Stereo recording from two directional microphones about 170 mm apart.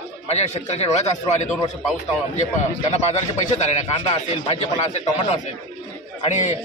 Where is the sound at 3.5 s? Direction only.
40° left (ahead or behind).